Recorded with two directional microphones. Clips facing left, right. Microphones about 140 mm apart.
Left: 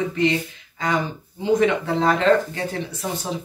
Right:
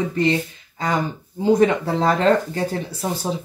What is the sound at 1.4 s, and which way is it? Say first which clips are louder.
Speech: right 2 dB; 35° right (ahead or behind).